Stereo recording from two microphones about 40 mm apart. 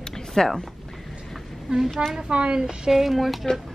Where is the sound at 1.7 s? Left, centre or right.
Centre.